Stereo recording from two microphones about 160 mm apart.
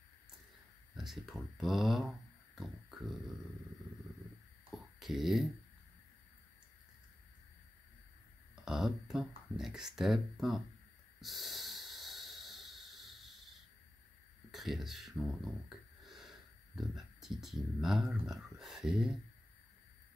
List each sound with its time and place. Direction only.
0.9 s speech: centre (ahead or behind)
4.6 s a sound: centre (ahead or behind)
8.6 s speech: 5° right (ahead or behind)
11.1 s snort: centre (ahead or behind)
14.5 s speech: centre (ahead or behind)